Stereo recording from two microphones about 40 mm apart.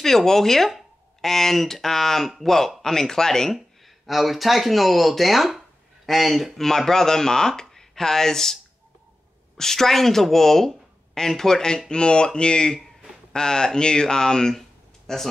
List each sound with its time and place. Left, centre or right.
0.0 s speech: centre
3.5 s speech: centre
9.6 s speech: centre
12.7 s a sound: centre
13.3 s speech: centre